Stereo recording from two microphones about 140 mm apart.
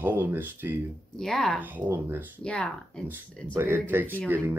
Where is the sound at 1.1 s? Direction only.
5° left (ahead or behind).